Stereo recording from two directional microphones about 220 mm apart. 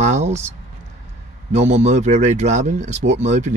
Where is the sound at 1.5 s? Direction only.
30° right (ahead or behind).